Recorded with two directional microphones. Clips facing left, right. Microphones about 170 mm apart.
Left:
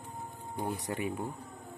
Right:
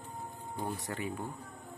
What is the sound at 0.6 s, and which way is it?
Speech, 15° left (ahead or behind).